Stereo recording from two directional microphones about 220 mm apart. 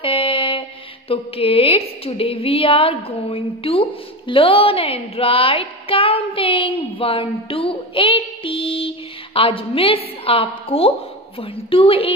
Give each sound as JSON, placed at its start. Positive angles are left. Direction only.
{"t": 0.0, "sound": "speech", "side_deg": 25}